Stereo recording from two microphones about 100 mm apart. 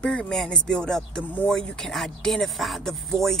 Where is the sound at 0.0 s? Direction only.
10° left (ahead or behind).